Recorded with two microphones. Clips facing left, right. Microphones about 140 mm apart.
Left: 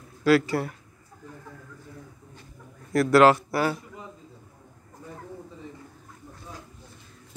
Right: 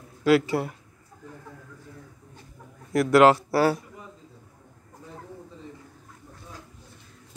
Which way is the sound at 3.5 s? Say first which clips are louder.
Right 4 dB; 40° right (ahead or behind).